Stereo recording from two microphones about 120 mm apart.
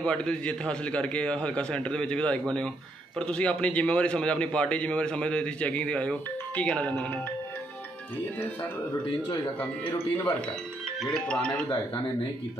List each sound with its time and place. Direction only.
0.0 s a man's voice: 10° left (ahead or behind)
9.6 s a man's voice: 15° left (ahead or behind)
11.0 s a man's voice: 5° left (ahead or behind)